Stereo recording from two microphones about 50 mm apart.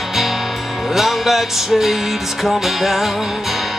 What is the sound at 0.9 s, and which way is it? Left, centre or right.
Music, centre.